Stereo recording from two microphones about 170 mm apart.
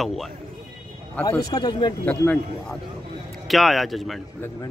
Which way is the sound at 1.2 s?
20° left (ahead or behind).